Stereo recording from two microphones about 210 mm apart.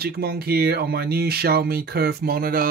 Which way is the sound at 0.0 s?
45° right (ahead or behind).